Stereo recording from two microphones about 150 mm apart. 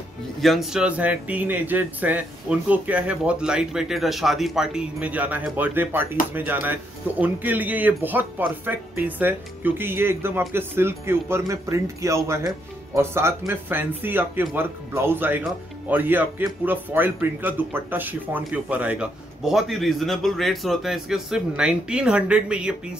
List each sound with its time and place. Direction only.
0.4 s speech: centre (ahead or behind)